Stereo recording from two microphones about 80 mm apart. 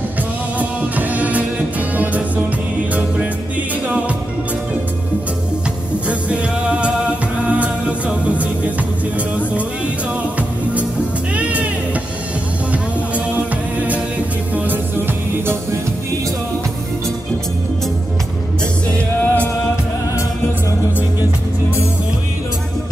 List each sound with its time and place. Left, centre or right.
0.6 s music: centre
6.0 s music: centre
11.3 s music: centre
14.5 s music: right
18.9 s music: centre